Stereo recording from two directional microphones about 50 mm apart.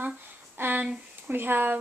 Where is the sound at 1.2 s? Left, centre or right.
Right.